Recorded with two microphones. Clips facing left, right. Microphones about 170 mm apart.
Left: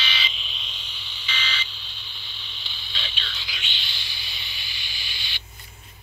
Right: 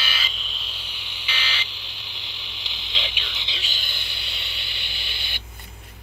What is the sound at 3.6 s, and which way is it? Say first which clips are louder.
Owl: right 2 dB; 45° right (ahead or behind).